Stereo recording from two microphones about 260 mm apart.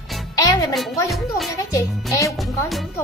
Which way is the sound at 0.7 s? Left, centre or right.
Centre.